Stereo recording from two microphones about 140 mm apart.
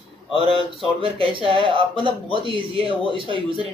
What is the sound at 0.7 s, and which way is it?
Speech, 40° right (ahead or behind).